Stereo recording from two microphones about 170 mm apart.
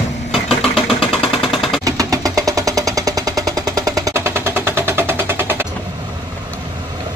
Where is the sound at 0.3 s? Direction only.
Centre (ahead or behind).